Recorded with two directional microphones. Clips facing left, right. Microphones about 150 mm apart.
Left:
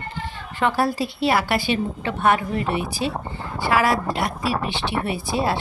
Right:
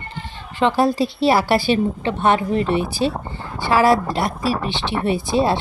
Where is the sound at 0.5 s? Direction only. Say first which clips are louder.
Right 4 dB; 20° right (ahead or behind).